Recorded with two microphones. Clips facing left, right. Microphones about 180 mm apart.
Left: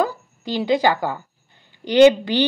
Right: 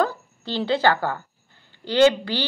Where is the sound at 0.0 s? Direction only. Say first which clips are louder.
Left 1 dB; 10° left (ahead or behind).